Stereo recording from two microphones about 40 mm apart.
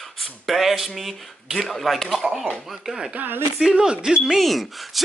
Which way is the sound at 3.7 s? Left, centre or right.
Right.